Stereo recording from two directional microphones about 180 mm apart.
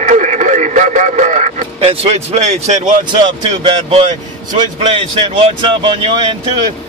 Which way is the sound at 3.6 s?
30° right (ahead or behind).